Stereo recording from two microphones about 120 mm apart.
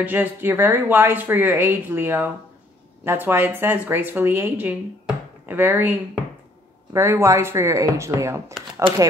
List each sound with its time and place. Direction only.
0.0 s a woman's voice: 15° right (ahead or behind)